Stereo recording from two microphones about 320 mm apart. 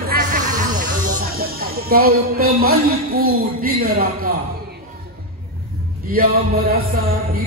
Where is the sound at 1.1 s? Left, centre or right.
Right.